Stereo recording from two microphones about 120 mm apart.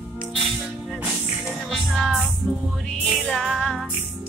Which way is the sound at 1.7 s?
Centre (ahead or behind).